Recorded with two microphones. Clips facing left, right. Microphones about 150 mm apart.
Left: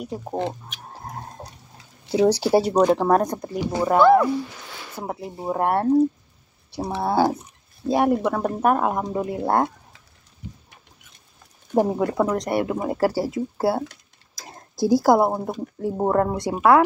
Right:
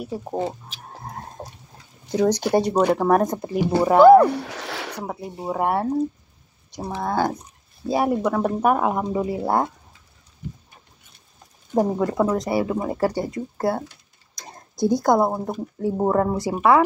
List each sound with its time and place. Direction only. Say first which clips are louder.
2.0 s speech: left 2 dB; 10° left (ahead or behind)
3.0 s speech: right 1 dB; 5° right (ahead or behind)
4.3 s a sound: left 1 dB; 80° right
4.9 s speech: even; 5° left (ahead or behind)
7.0 s speech: left 3 dB; 10° left (ahead or behind)
11.7 s speech: even; 5° left (ahead or behind)